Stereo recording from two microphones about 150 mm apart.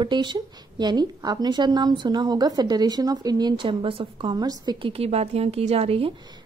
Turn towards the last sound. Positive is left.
turn(degrees=-40)  # may be behind; listen again after turning